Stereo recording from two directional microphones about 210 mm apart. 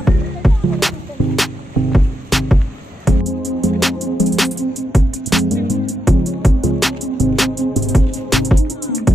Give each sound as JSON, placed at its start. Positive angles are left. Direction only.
{"t": 0.0, "sound": "music", "side_deg": 0}